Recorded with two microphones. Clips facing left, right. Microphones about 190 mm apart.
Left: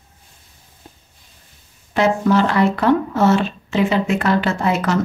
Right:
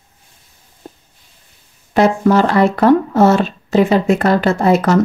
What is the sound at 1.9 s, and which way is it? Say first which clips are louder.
Speech: right 4 dB; 40° right (ahead or behind).